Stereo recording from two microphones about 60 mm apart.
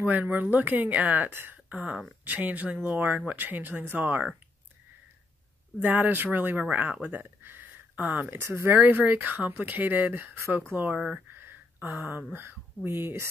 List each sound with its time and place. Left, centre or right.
0.0 s speech: right
5.8 s speech: right
8.4 s speech: right
8.7 s speech: right
11.1 s a sound: right
12.4 s speech: right